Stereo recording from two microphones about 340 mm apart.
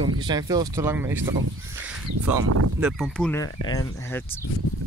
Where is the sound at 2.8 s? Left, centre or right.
Centre.